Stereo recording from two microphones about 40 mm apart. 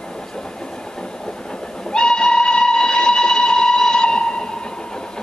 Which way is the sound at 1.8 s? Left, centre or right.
Centre.